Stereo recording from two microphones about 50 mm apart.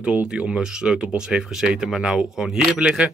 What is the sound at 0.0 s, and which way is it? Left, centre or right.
Speech, right.